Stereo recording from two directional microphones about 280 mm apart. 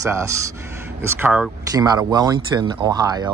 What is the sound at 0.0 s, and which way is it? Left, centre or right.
Speech, centre.